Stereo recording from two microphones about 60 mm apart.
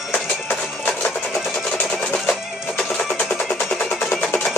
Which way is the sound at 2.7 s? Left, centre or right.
Centre.